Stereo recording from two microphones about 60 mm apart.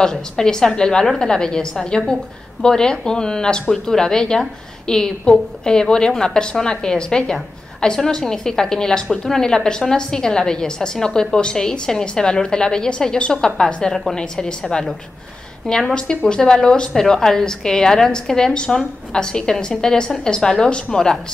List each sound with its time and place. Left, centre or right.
0.0 s speech: centre